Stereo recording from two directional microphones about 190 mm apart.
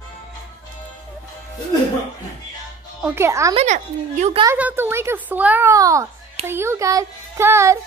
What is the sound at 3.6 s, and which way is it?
Speech, 40° right (ahead or behind).